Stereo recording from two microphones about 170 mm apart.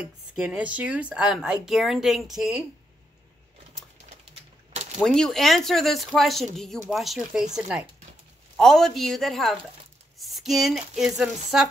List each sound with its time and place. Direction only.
0.3 s a woman's voice: 5° right (ahead or behind)
4.9 s a woman's voice: 5° left (ahead or behind)